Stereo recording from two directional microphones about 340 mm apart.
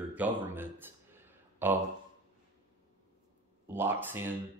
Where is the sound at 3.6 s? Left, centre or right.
Centre.